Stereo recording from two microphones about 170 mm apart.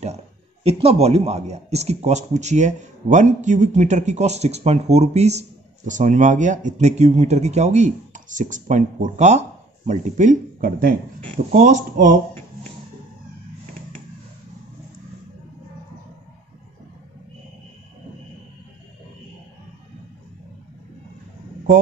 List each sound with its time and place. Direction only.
0.7 s a man's voice: 35° right (ahead or behind)